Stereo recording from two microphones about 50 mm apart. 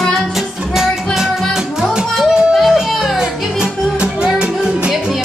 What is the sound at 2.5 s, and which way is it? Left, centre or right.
Music, centre.